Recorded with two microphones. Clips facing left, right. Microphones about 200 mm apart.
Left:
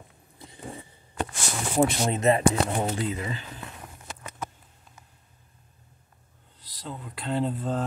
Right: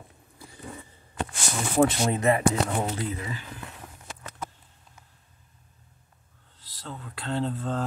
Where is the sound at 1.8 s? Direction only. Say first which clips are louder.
Right 1 dB; 20° left (ahead or behind).